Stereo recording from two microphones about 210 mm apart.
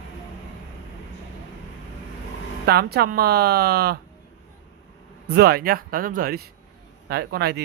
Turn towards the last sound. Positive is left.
turn(degrees=-50)  # may be behind; listen again after turning